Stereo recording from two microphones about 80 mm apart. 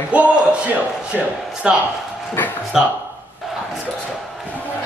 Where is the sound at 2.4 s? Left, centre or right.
Left.